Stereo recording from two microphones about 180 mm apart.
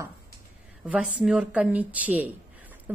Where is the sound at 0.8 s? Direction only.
10° right (ahead or behind).